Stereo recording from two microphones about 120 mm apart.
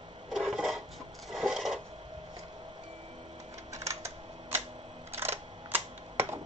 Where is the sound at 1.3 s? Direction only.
Centre (ahead or behind).